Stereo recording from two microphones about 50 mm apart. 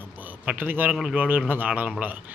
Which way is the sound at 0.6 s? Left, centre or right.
Right.